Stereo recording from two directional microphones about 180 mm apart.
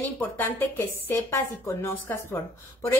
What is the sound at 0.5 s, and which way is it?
A woman's voice, 10° left (ahead or behind).